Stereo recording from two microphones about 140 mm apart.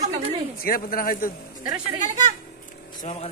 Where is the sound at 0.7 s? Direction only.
90° left.